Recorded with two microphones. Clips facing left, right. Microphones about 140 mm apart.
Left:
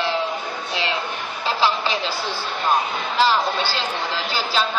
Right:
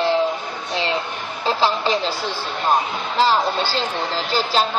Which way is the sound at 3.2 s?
35° right (ahead or behind).